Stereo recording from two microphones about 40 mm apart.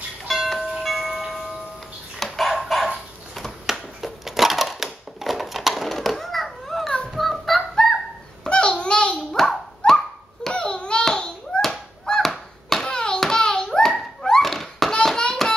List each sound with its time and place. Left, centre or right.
0.8 s music: centre
2.1 s chicken: centre
3.6 s crushing: centre
7.2 s fowl: centre
7.7 s fowl: centre
8.5 s a sound: left
9.4 s dog: centre
10.5 s a sound: left
12.1 s chop: centre
12.8 s hands: left
13.8 s a sound: centre
15.1 s hands: centre